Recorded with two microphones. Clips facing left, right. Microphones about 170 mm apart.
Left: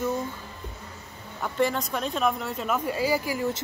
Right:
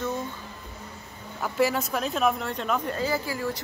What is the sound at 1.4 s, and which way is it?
Speech, 5° right (ahead or behind).